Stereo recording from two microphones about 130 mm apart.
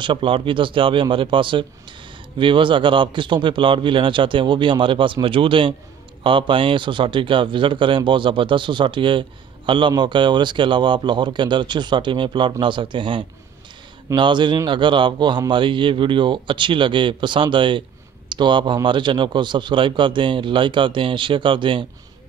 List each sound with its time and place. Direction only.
0.0 s a man's voice: 40° right (ahead or behind)